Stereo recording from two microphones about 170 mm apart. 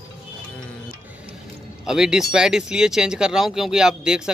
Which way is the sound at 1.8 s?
5° right (ahead or behind).